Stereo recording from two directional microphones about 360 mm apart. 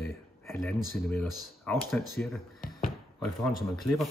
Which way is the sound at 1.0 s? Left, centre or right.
Centre.